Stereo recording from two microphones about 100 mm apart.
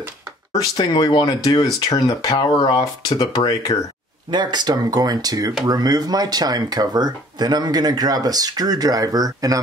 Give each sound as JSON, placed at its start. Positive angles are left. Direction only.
{"t": 0.5, "sound": "speech", "side_deg": 40}
{"t": 4.3, "sound": "speech", "side_deg": -45}